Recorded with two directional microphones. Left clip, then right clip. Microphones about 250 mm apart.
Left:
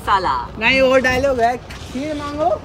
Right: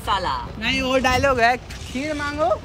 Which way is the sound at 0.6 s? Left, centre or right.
Centre.